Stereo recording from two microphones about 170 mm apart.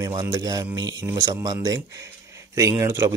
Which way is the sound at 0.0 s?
20° right (ahead or behind).